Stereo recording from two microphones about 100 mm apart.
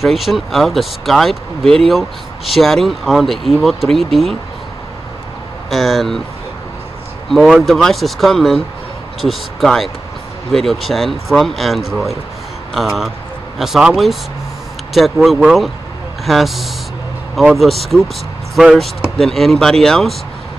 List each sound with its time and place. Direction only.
0.0 s speech: centre (ahead or behind)
5.7 s speech: centre (ahead or behind)
7.2 s speech: 5° left (ahead or behind)